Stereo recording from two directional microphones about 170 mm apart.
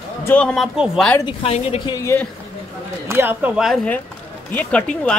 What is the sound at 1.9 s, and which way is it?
Speech, 20° left (ahead or behind).